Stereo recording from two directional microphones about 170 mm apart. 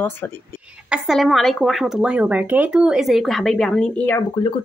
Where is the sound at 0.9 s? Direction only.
Centre (ahead or behind).